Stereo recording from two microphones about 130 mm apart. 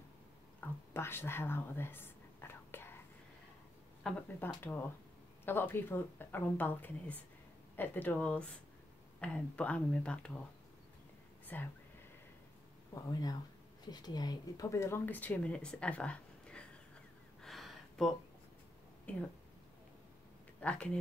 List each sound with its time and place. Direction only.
0.6 s whispering: 15° left (ahead or behind)
4.1 s speech: 5° left (ahead or behind)
4.6 s speech: 15° left (ahead or behind)
11.4 s speech: 15° left (ahead or behind)
12.9 s speech: 30° left (ahead or behind); by 16.6 s 10° left (ahead or behind)
17.4 s a sound: centre (ahead or behind)
19.1 s speech: 10° left (ahead or behind)
20.6 s speech: 10° left (ahead or behind)